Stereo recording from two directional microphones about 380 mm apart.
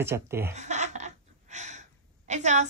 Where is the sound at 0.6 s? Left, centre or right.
Centre.